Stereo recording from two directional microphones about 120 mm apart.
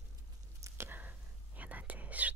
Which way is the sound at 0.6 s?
20° right (ahead or behind).